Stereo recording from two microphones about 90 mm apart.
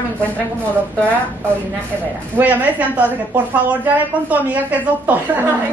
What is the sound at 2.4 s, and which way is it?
A woman's voice, 20° right (ahead or behind).